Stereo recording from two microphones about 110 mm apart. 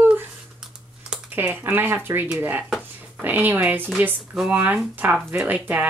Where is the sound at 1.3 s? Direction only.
20° right (ahead or behind).